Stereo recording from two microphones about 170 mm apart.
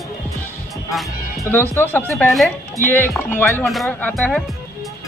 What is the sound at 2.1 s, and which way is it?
Speech, centre (ahead or behind).